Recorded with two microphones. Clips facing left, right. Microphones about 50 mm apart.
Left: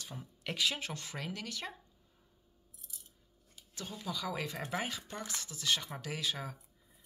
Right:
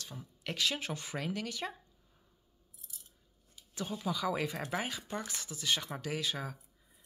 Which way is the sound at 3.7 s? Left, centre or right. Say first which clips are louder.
Right 5 dB; centre.